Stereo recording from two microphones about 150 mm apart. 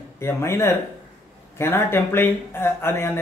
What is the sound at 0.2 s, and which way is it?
Speech, 15° left (ahead or behind).